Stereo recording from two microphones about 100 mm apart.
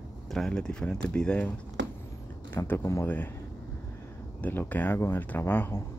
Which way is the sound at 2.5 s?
20° left (ahead or behind).